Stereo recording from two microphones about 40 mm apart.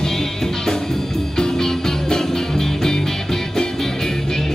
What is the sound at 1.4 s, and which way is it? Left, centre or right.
Music, centre.